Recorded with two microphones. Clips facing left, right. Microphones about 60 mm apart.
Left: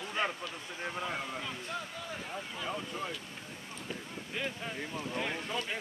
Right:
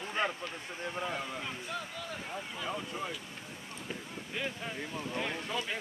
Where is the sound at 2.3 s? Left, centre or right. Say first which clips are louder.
Even; centre.